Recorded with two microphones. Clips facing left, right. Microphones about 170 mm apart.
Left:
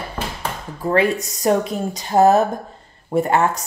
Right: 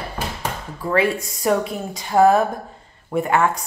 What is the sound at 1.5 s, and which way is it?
Speech, 30° left (ahead or behind).